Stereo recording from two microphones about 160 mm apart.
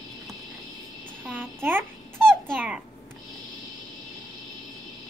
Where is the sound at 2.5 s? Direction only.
10° right (ahead or behind).